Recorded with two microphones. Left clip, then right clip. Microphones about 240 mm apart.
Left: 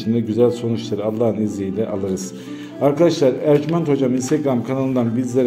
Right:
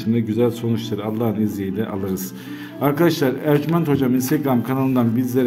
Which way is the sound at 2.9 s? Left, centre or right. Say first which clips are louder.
Left 3 dB; centre.